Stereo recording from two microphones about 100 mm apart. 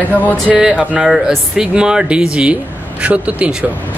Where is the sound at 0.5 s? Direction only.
5° right (ahead or behind).